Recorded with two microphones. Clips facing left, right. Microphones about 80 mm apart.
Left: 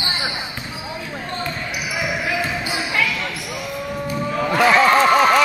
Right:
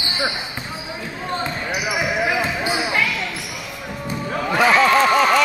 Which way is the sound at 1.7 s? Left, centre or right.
Right.